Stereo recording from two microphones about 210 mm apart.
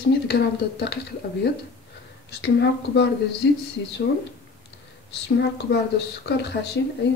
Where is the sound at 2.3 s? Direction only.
55° left (ahead or behind).